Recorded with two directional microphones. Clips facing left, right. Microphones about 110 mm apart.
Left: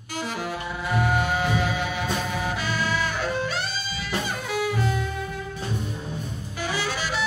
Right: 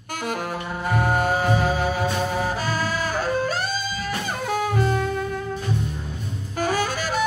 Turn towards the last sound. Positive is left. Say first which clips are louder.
# right 4 dB
turn(degrees=-45)  # may be behind; listen again after turning